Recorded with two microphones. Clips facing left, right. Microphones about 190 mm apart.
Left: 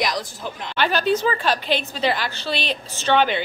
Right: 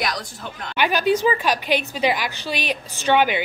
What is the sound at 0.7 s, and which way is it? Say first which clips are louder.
A woman's voice: right 1 dB; 10° right (ahead or behind).